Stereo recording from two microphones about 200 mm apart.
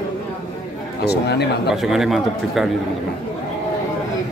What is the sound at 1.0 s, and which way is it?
Speech, 55° left (ahead or behind).